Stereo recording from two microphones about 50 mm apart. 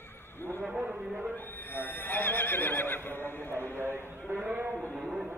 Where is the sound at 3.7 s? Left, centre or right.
Right.